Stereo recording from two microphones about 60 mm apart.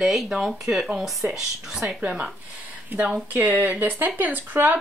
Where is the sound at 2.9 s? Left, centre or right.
Right.